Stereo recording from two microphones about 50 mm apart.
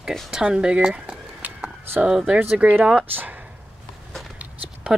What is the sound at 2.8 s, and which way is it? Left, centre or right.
Speech, right.